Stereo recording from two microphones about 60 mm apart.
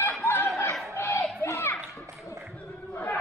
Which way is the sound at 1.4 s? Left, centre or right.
Left.